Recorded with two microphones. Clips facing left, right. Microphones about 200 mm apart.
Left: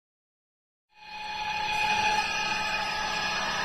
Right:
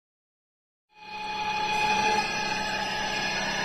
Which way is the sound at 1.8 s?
60° right (ahead or behind).